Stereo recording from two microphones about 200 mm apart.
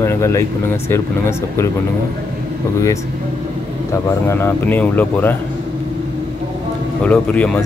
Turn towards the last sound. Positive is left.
turn(degrees=5)  # may be behind; listen again after turning